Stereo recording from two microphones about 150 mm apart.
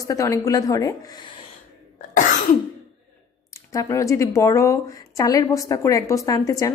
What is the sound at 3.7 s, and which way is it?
A woman's voice, 20° left (ahead or behind).